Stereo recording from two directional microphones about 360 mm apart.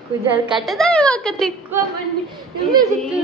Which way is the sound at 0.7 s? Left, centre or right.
Centre.